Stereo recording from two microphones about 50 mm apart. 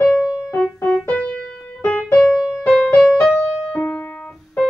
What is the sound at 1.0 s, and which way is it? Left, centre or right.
Keyboard, left.